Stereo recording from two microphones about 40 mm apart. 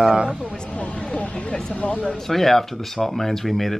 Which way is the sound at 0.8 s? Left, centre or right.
Left.